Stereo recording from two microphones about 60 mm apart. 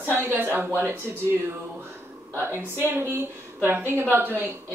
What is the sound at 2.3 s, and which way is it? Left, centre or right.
Speech, right.